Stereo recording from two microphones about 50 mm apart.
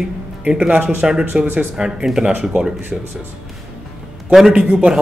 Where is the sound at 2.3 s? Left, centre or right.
Right.